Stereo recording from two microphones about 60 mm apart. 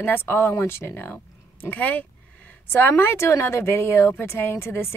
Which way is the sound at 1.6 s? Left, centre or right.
Left.